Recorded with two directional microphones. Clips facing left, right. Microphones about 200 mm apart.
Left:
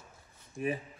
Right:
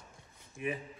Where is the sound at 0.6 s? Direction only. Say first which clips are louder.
Left 3 dB; 40° left (ahead or behind).